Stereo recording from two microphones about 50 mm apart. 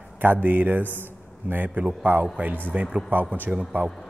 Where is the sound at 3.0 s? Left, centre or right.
Right.